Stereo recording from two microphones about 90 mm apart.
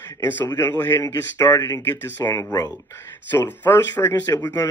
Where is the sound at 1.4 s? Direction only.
40° left (ahead or behind).